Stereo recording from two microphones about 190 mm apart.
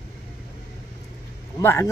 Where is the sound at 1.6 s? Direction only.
15° left (ahead or behind).